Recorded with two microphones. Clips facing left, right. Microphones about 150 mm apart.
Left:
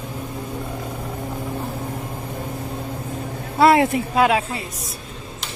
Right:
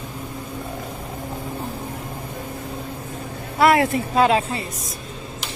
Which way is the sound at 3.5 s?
25° left (ahead or behind).